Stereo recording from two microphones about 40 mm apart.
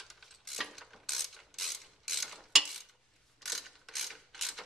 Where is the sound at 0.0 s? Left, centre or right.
Centre.